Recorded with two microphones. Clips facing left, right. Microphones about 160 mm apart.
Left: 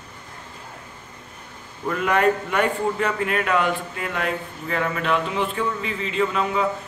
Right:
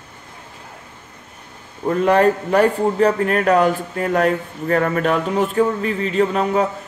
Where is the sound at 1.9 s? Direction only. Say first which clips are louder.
Right 5 dB; 35° right (ahead or behind).